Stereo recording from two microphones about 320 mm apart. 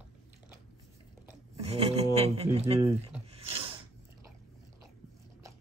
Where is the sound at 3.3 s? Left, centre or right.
Centre.